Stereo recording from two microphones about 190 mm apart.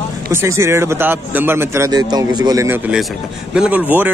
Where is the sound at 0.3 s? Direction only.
15° right (ahead or behind).